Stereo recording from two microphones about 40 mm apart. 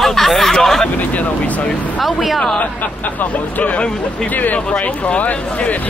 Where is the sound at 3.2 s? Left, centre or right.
Left.